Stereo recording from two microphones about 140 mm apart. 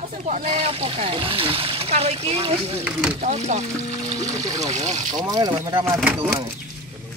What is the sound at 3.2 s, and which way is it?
Speech, 50° right (ahead or behind).